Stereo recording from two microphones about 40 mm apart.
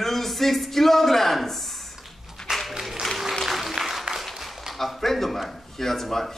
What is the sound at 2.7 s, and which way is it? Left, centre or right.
Applause, centre.